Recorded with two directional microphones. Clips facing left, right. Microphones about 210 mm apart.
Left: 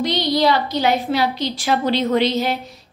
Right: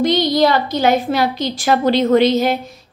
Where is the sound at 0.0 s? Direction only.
50° right (ahead or behind).